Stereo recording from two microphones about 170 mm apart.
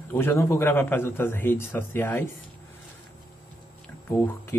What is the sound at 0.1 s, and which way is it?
Speech, 15° left (ahead or behind).